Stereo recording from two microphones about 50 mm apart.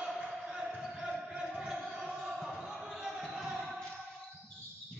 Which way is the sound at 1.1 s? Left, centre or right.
Centre.